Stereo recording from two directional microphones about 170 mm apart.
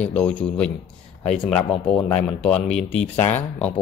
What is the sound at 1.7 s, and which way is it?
Speech, 35° left (ahead or behind).